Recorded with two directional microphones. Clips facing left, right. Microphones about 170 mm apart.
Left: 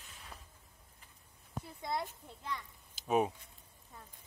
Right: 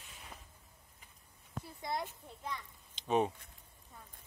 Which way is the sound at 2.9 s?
5° left (ahead or behind).